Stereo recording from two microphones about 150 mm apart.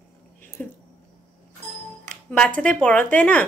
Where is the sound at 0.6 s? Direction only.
10° left (ahead or behind).